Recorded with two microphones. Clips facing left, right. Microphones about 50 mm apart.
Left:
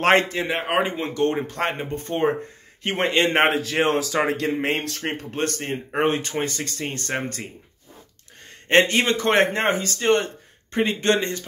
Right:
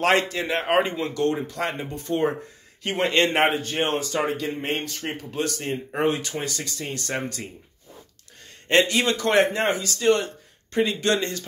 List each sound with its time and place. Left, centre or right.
0.0 s speech: left
0.3 s speech: left
0.6 s speech: centre
0.9 s speech: left
3.4 s a man's voice: left
4.3 s a man's voice: left
5.0 s speech: left
8.6 s speech: left